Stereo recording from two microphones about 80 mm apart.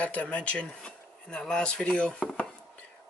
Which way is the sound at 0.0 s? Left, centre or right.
Centre.